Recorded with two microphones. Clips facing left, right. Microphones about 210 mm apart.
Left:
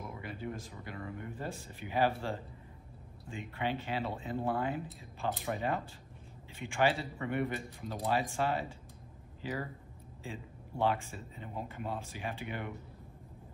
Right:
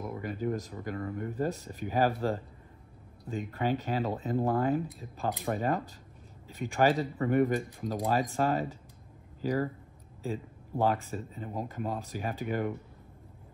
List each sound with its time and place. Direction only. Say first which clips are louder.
0.1 s speech: right 11 dB; 45° right (ahead or behind)